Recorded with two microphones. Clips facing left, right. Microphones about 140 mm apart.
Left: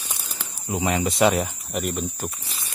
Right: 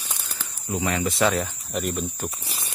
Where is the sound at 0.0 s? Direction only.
10° left (ahead or behind).